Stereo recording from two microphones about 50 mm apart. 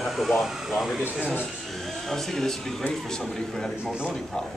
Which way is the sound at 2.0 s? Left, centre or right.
Centre.